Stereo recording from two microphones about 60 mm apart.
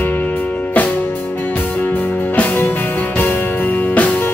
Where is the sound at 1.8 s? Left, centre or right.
Left.